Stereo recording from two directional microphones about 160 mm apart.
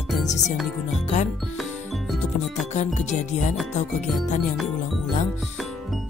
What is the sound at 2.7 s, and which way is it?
Music, 50° left (ahead or behind).